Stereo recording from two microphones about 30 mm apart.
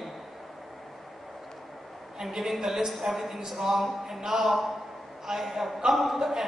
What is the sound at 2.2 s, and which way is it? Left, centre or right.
A woman's voice, centre.